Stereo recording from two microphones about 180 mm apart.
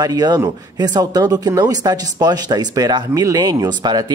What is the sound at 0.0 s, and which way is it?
Speech, 20° right (ahead or behind).